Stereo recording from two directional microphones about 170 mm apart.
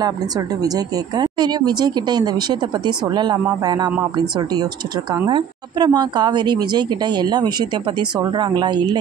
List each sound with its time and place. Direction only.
0.7 s a woman's voice: 25° right (ahead or behind)
5.1 s a woman's voice: 25° right (ahead or behind)